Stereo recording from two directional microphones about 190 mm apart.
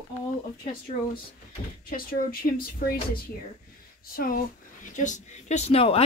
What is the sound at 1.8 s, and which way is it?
Speech, 50° left (ahead or behind).